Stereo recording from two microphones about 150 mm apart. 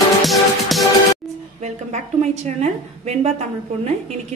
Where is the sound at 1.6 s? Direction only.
50° right (ahead or behind).